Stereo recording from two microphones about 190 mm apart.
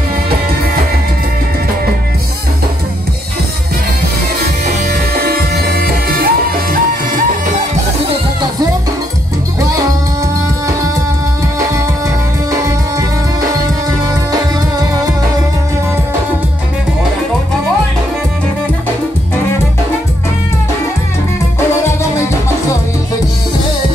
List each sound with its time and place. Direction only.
5.1 s music: 55° right (ahead or behind)